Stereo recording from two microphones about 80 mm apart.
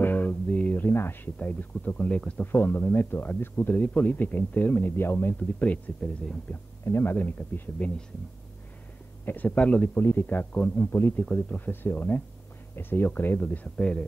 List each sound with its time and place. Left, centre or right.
0.0 s a sound: left
1.4 s speech: centre
6.5 s speech: left
9.2 s speech: left